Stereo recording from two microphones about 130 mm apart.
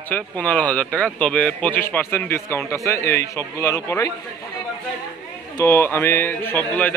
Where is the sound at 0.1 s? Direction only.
10° left (ahead or behind).